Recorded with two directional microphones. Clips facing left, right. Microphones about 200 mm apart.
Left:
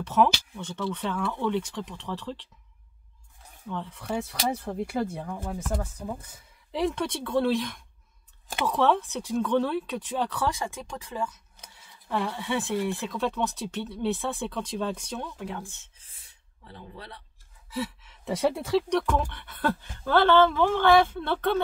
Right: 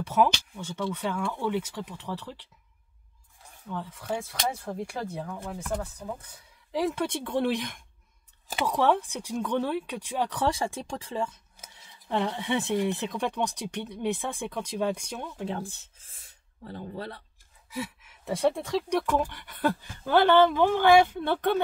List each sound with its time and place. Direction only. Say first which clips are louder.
0.0 s speech: left 1 dB; 10° right (ahead or behind)
3.6 s speech: left 1 dB; 5° right (ahead or behind); by 6.2 s 15° left (ahead or behind)
6.7 s speech: even; 5° right (ahead or behind)
7.1 s speech: left 2 dB; 15° right (ahead or behind)
10.5 s speech: right 3 dB; 35° right (ahead or behind)
15.5 s speech: right 3 dB; 35° right (ahead or behind)
17.6 s speech: left 3 dB; 10° right (ahead or behind)
18.9 s speech: even; 10° right (ahead or behind)